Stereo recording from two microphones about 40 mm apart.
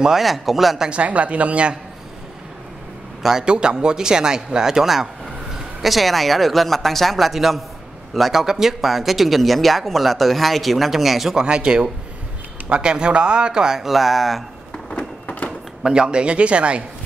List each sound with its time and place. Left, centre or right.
0.2 s speech: centre
0.7 s speech: right
3.2 s a man's voice: centre
11.3 s speech: right; by 14.4 s centre
14.7 s a sound: left
15.8 s speech: right